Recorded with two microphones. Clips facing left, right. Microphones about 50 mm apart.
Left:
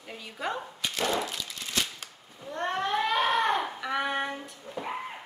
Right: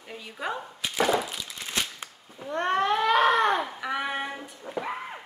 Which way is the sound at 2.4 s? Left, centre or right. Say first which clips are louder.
Right 5 dB; right.